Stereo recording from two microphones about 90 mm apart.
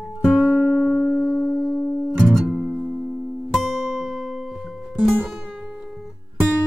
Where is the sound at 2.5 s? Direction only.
5° right (ahead or behind).